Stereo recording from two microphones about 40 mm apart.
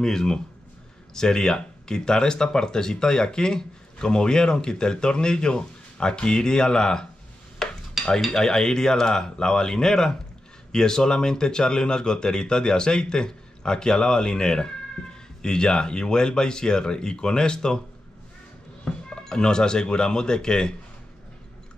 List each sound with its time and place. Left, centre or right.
0.0 s speech: centre
7.6 s dishes: centre
8.0 s cutlery: centre
8.3 s speech: centre
19.0 s speech: centre